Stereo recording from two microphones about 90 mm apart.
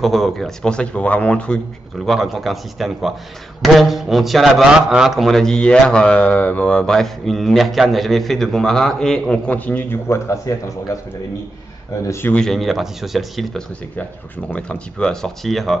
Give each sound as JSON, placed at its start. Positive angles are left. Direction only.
{"t": 0.0, "sound": "a man's voice", "side_deg": 0}
{"t": 2.0, "sound": "a man's voice", "side_deg": 0}
{"t": 12.3, "sound": "a man's voice", "side_deg": 5}
{"t": 14.5, "sound": "a man's voice", "side_deg": 10}